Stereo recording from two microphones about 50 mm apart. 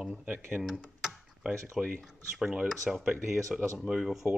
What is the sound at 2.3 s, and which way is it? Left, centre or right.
Speech, centre.